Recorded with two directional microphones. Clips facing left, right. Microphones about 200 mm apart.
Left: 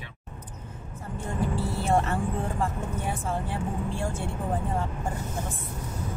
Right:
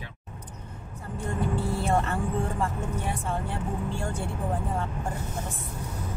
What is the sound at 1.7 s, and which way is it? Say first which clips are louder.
Speech: left 3 dB; centre (ahead or behind).